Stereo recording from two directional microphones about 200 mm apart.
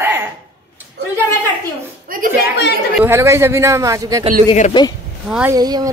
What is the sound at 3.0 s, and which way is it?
A man's voice, 10° right (ahead or behind).